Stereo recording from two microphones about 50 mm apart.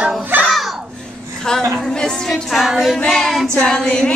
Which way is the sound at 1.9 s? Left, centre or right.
Centre.